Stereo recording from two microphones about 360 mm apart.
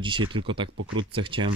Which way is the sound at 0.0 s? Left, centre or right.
Centre.